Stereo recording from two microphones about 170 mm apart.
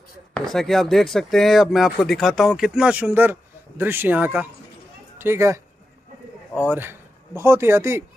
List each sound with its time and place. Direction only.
0.3 s a man's voice: centre (ahead or behind); by 8.0 s 15° right (ahead or behind)